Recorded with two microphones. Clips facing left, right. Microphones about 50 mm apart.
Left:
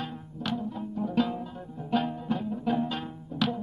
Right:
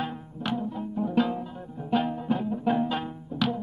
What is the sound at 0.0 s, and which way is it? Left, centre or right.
Music, centre.